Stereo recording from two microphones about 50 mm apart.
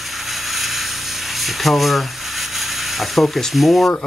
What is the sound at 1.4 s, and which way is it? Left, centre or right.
Rub, centre.